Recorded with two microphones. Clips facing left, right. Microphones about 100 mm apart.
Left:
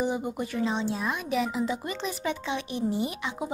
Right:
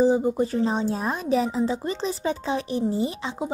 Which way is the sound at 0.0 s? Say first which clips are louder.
Right 9 dB; 30° right (ahead or behind).